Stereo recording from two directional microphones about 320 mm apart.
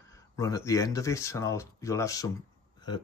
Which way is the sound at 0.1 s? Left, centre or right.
Centre.